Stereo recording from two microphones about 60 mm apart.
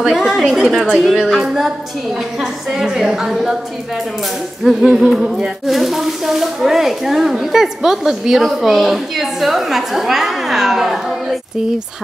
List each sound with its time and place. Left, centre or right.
0.0 s speech: centre
2.7 s a woman's voice: centre
4.6 s speech: centre